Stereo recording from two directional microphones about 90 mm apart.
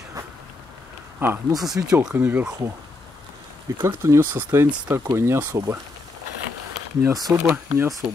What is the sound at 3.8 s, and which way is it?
Speech, 30° right (ahead or behind).